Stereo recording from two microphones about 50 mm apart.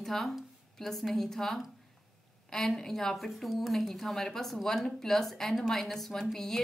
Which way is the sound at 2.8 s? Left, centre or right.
Centre.